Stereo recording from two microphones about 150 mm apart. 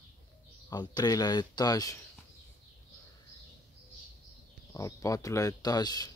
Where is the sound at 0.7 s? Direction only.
25° left (ahead or behind).